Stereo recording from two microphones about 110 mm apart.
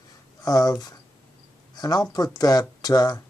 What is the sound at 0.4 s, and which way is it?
Speech, 35° left (ahead or behind).